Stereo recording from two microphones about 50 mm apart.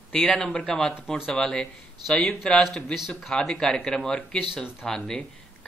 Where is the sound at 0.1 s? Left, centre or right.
Centre.